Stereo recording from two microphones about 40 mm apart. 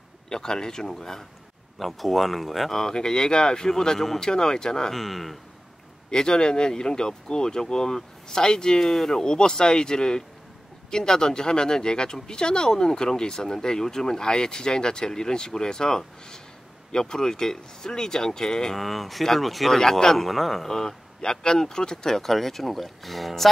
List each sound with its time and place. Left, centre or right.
0.3 s speech: centre
2.7 s speech: centre
4.9 s speech: centre
6.0 s speech: centre
18.8 s speech: centre
19.8 s speech: centre